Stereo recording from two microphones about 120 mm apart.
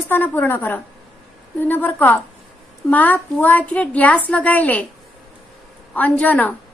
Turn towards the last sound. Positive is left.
turn(degrees=15)  # may be behind; listen again after turning